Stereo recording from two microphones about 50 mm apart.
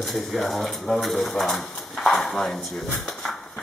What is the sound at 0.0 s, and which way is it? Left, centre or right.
Speech, centre.